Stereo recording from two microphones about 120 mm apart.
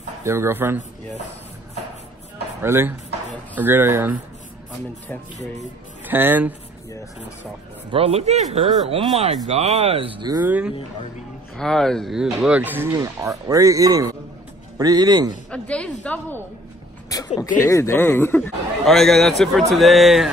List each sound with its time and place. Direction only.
0.2 s speech: 20° right (ahead or behind)
2.6 s speech: 20° right (ahead or behind)
6.0 s speech: 15° right (ahead or behind)
7.9 s speech: 55° right (ahead or behind)
10.4 s speech: 15° right (ahead or behind)
11.5 s speech: 5° left (ahead or behind); by 12.9 s 15° right (ahead or behind)
12.9 s a man's voice: 30° right (ahead or behind)
15.5 s a woman's voice: 10° left (ahead or behind)
17.1 s a sound: 30° left (ahead or behind)
17.6 s speech: 20° left (ahead or behind)
18.9 s speech: 5° left (ahead or behind)